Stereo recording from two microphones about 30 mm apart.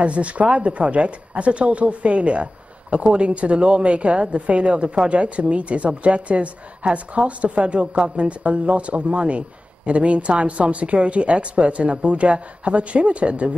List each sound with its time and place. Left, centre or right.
0.0 s speech: right